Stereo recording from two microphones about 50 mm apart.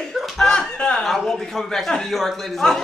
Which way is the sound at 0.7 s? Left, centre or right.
Centre.